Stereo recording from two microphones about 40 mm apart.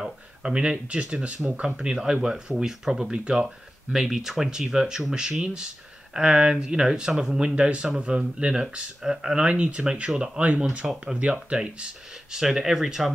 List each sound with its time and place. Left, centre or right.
0.4 s speech: right
1.8 s speech: centre
3.1 s speech: right
3.4 s speech: centre
7.5 s speech: right
9.5 s speech: right
12.4 s speech: centre